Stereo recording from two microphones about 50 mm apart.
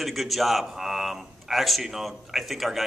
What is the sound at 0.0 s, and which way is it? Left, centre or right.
A man's voice, centre.